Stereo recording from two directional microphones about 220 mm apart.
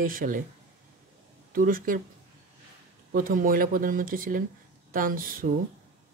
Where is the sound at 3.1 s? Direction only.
40° right (ahead or behind).